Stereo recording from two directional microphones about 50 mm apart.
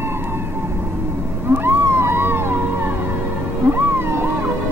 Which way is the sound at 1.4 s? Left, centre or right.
Right.